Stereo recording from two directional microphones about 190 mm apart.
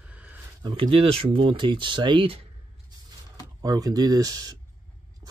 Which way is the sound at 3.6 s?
20° right (ahead or behind).